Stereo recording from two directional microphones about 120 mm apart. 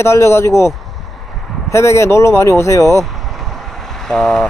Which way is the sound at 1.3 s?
Centre (ahead or behind).